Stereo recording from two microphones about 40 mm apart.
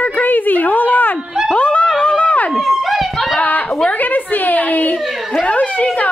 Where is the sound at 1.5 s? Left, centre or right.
Left.